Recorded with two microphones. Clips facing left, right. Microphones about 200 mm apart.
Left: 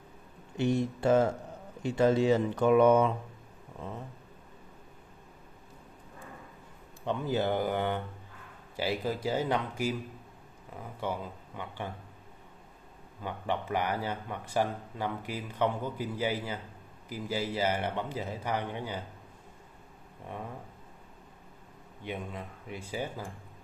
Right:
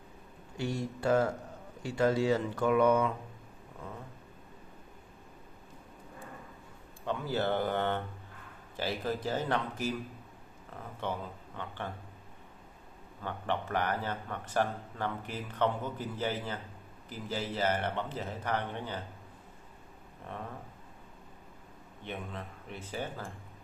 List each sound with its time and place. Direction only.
0.6 s speech: 20° left (ahead or behind)
7.1 s speech: 15° left (ahead or behind)
13.2 s speech: 10° left (ahead or behind)
22.0 s speech: 10° left (ahead or behind)